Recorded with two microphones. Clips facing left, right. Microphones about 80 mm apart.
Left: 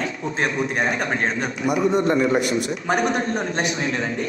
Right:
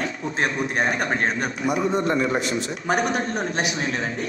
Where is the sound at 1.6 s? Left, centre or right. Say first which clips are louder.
Left 3 dB; right.